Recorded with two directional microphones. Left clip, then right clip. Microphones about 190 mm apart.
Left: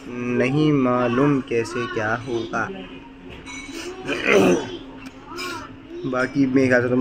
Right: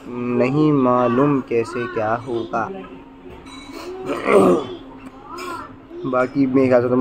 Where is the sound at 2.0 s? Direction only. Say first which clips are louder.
Right 4 dB; 20° left (ahead or behind).